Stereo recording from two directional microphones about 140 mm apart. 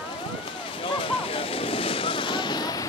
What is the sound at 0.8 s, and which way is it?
Vehicle, 40° left (ahead or behind).